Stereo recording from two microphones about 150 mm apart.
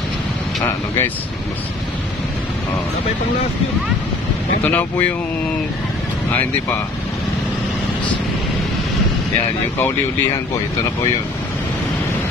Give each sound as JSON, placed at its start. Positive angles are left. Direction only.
{"t": 4.6, "sound": "speech", "side_deg": 10}